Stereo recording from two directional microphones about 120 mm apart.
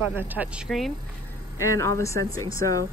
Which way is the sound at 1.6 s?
25° left (ahead or behind).